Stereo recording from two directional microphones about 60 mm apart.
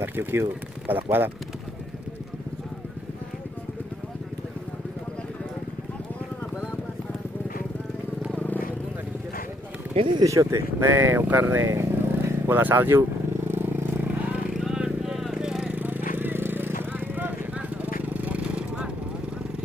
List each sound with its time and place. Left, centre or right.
0.0 s speech: right
8.4 s vehicle: left
10.2 s speech: right
10.9 s speech: right
11.6 s vehicle: right
14.5 s a sound: centre
15.7 s a sound: right